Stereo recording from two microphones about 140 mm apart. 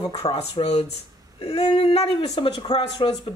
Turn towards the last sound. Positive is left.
turn(degrees=40)  # may be behind; listen again after turning